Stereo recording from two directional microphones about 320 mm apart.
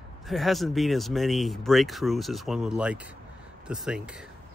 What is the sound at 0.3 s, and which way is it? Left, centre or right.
Speech, centre.